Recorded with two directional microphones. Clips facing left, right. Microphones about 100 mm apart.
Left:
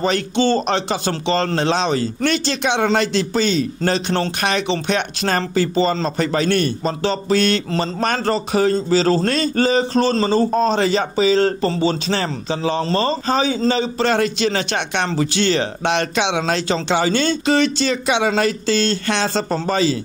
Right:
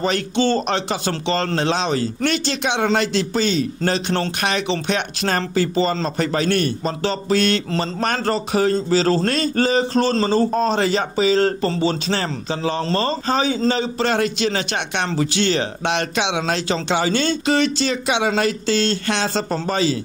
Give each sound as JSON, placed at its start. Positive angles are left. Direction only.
{"t": 0.0, "sound": "a man's voice", "side_deg": 25}